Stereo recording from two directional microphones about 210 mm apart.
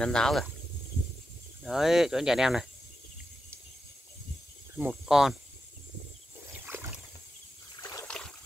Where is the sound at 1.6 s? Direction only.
Centre (ahead or behind).